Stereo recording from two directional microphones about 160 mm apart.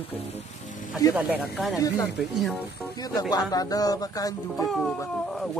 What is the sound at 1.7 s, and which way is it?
Speech, 20° left (ahead or behind).